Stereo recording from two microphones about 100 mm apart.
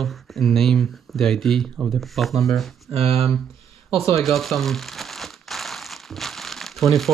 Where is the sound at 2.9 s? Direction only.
80° right.